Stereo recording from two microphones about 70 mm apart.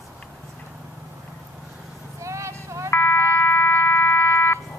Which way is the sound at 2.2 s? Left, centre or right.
Right.